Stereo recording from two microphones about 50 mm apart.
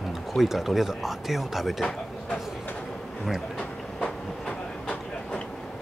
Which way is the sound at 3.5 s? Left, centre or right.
Centre.